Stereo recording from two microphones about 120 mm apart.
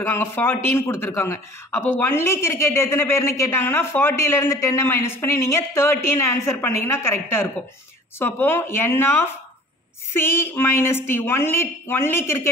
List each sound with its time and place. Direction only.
0.0 s speech: 20° left (ahead or behind)